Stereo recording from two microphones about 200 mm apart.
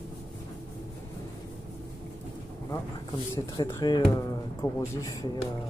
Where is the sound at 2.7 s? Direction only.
20° left (ahead or behind).